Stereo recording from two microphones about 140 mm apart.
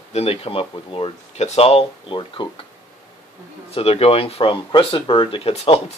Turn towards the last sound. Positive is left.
turn(degrees=45)  # may be behind; listen again after turning